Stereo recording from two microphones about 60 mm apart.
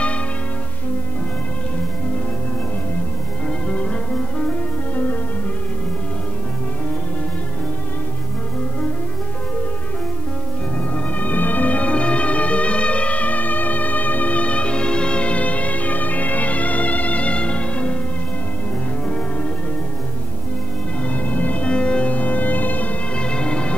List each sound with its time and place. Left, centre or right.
3.4 s music: centre
11.1 s music: left
21.0 s music: left
23.1 s music: centre